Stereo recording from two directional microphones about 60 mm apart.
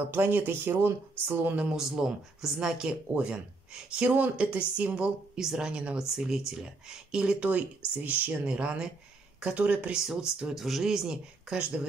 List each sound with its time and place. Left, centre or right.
0.1 s speech: right
1.7 s a woman's voice: centre
9.9 s a woman's voice: centre